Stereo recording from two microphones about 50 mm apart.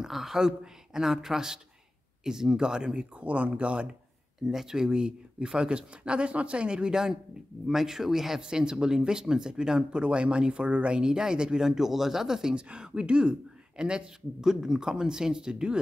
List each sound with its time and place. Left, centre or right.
0.0 s speech: centre; by 3.9 s right
4.4 s speech: centre